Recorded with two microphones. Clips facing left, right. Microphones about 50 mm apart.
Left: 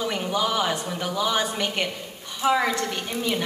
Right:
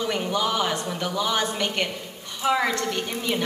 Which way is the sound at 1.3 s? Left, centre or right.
Centre.